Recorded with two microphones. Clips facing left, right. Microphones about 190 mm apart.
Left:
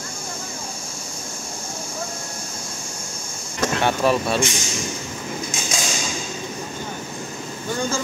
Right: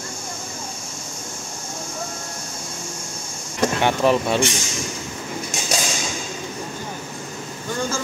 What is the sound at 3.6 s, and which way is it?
Speech, 15° right (ahead or behind).